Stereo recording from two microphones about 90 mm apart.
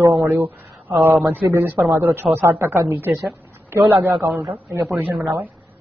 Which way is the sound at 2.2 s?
10° right (ahead or behind).